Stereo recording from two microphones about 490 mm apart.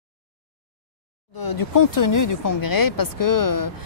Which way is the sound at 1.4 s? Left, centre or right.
Left.